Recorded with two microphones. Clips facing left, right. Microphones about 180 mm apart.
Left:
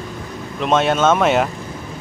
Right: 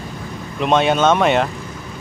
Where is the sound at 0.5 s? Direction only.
Centre (ahead or behind).